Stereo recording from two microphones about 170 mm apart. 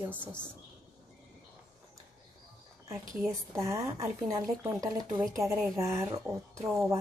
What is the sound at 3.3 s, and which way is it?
Speech, 15° right (ahead or behind).